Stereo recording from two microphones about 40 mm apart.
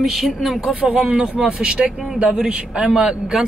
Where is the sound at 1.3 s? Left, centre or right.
Right.